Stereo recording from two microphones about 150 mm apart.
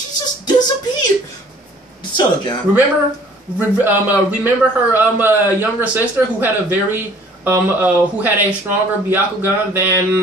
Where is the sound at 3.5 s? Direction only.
15° right (ahead or behind).